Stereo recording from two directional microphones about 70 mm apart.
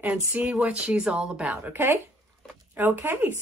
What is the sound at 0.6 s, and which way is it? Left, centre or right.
Speech, centre.